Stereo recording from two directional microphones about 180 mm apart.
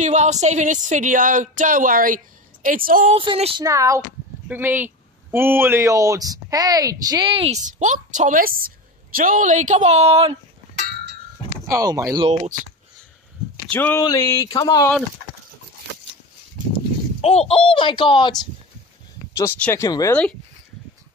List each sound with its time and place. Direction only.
0.0 s speech: 40° right (ahead or behind)
3.2 s speech: 30° right (ahead or behind)
3.6 s speech: 15° right (ahead or behind)
7.6 s speech: 45° right (ahead or behind)
11.6 s speech: 20° right (ahead or behind)
13.7 s speech: 10° left (ahead or behind)
17.2 s speech: 35° left (ahead or behind)
19.3 s speech: 15° left (ahead or behind)